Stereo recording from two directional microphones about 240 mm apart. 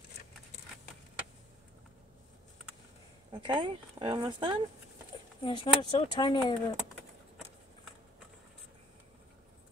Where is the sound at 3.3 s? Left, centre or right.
Centre.